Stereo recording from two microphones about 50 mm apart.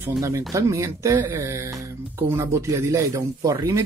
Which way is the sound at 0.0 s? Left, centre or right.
Right.